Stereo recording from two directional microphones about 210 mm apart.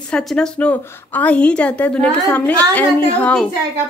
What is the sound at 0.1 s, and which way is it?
A woman's voice, centre (ahead or behind).